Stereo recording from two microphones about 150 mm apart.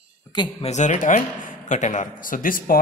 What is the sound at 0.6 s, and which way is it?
A man's voice, 50° left (ahead or behind).